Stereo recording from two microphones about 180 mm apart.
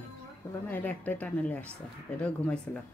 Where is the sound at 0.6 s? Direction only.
10° left (ahead or behind).